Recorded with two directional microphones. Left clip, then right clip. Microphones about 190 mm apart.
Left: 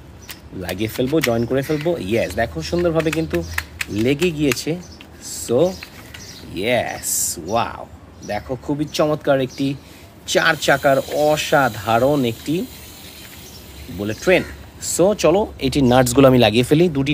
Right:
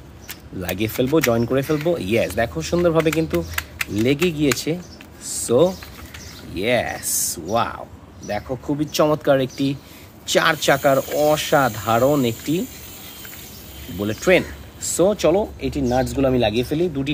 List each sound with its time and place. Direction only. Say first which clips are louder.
0.6 s speech: even; 10° right (ahead or behind)
5.3 s a sound: right 1 dB; 10° right (ahead or behind)
6.5 s speech: left 1 dB; 5° right (ahead or behind)
13.9 s speech: even; 10° right (ahead or behind); by 15.4 s 10° left (ahead or behind)
15.8 s speech: left 7 dB; 40° left (ahead or behind)